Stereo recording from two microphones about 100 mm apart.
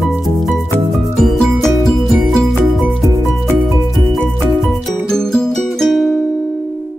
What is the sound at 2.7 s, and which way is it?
Music, centre (ahead or behind).